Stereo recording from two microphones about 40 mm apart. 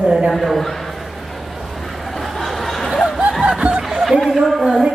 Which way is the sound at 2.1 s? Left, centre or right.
Centre.